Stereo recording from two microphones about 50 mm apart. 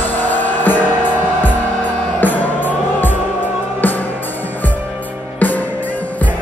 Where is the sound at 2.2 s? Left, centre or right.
Left.